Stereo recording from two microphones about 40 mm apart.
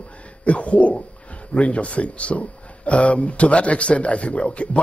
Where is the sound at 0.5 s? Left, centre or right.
Left.